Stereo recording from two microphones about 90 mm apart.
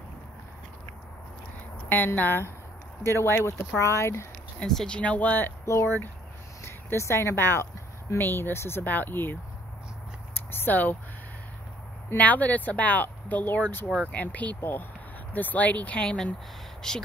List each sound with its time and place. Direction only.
1.9 s speech: 20° left (ahead or behind)
4.6 s speech: 10° left (ahead or behind)
5.7 s speech: 30° left (ahead or behind)
10.3 s a sound: 25° left (ahead or behind)
12.1 s speech: 15° left (ahead or behind)